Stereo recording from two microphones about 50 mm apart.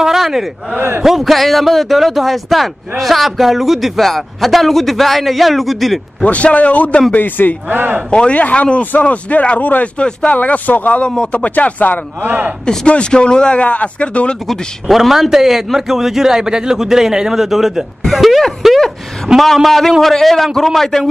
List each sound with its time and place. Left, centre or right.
0.0 s a man's voice: centre
6.2 s speech: left
7.6 s speech: right
8.1 s speech: left
11.0 s speech: centre
11.4 s speech: left
12.2 s speech: right
12.6 s speech: left
14.5 s a man's voice: centre